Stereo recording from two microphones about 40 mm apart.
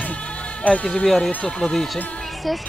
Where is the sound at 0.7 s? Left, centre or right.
Left.